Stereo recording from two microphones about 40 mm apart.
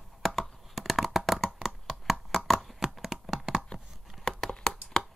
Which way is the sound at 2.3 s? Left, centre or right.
Centre.